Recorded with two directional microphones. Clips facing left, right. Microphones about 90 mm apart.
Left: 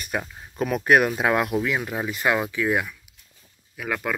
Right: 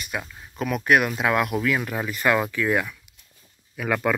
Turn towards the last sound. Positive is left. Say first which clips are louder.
# right 4 dB
turn(degrees=0)  # may be behind; listen again after turning